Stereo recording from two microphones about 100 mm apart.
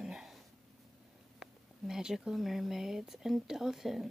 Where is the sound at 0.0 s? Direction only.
5° right (ahead or behind).